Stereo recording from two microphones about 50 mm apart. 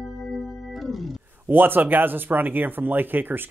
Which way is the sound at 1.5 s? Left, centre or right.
Right.